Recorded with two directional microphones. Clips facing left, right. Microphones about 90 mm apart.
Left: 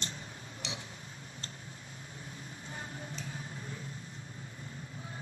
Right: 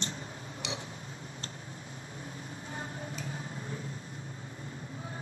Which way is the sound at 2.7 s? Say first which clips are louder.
Right 3 dB; 35° right (ahead or behind).